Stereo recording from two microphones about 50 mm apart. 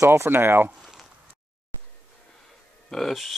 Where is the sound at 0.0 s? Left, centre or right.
Right.